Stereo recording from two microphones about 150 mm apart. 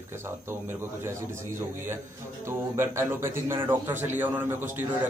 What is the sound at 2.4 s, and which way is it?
A man's voice, 15° right (ahead or behind).